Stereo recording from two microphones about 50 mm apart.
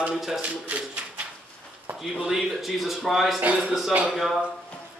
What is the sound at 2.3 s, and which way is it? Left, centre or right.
Speech, centre.